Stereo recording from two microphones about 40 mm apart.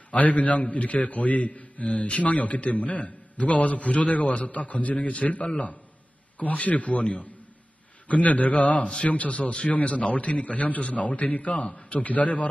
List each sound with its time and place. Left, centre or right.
0.2 s a man's voice: left